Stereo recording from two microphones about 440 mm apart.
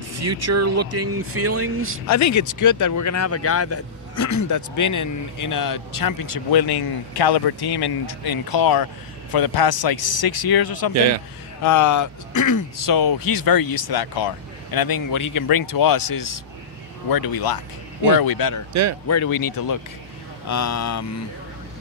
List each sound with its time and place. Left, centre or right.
0.1 s speech: right
2.0 s speech: left
11.6 s speech: left
18.7 s speech: right
19.0 s speech: left